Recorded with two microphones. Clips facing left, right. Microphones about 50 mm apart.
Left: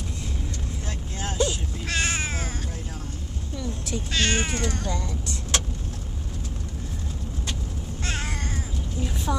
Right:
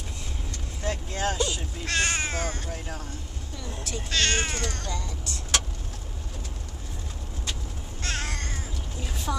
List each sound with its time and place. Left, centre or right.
0.8 s vehicle: right
1.9 s cat: centre
4.1 s speech: centre
4.9 s vehicle: centre
8.0 s cat: centre
9.0 s a woman's voice: centre